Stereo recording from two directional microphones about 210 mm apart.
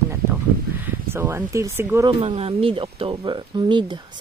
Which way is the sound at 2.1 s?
25° right (ahead or behind).